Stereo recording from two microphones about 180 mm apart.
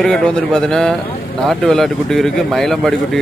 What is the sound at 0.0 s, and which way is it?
Speech, 5° left (ahead or behind).